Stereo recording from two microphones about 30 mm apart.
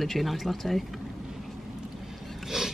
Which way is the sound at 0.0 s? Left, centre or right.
Centre.